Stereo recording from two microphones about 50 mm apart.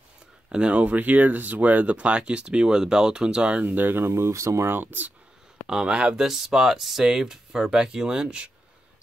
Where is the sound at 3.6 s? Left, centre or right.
Right.